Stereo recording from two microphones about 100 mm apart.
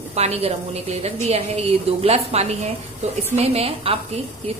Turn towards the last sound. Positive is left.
turn(degrees=-70)  # may be behind; listen again after turning